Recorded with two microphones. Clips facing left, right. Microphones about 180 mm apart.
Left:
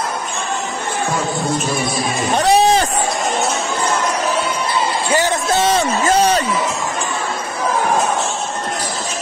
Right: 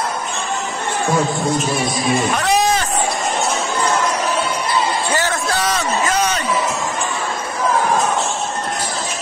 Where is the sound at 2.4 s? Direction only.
30° left (ahead or behind).